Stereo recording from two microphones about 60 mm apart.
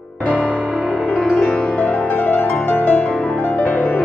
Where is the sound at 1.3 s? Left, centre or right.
Centre.